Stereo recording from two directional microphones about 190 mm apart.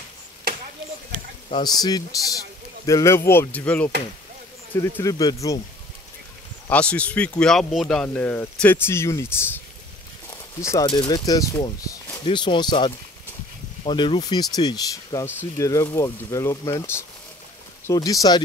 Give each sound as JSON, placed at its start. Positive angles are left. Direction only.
{"t": 1.5, "sound": "speech", "side_deg": 20}
{"t": 6.7, "sound": "speech", "side_deg": 5}
{"t": 10.6, "sound": "speech", "side_deg": 15}